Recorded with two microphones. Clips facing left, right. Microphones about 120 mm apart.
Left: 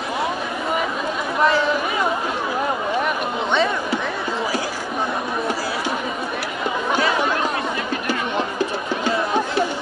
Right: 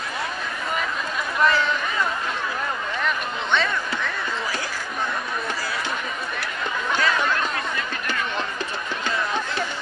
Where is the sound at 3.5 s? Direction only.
20° left (ahead or behind).